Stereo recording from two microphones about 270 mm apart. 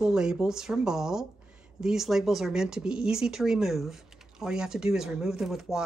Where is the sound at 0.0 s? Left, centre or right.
Centre.